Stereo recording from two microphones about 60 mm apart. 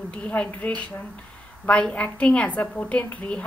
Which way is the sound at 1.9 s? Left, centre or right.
Left.